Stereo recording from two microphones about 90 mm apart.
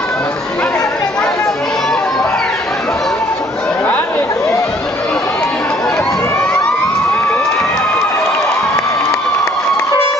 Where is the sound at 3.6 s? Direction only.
20° left (ahead or behind).